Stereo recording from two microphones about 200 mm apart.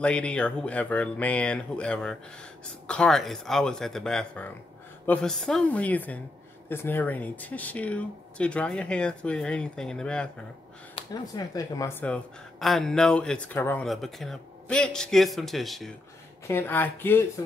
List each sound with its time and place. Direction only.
0.0 s a woman's voice: 5° left (ahead or behind)
11.0 s a woman's voice: 20° left (ahead or behind)